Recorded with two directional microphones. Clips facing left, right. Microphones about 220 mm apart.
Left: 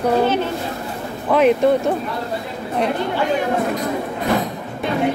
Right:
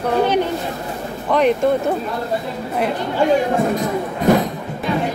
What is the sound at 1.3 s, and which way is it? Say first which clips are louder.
Speech: left 2 dB; 5° left (ahead or behind).